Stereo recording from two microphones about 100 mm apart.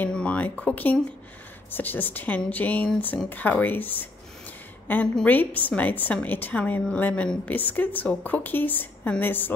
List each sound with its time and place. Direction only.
0.0 s a woman's voice: 10° left (ahead or behind)